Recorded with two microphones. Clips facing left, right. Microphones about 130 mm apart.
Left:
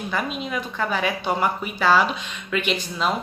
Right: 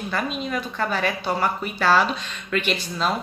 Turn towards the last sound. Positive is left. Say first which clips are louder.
# even
turn(degrees=15)  # may be behind; listen again after turning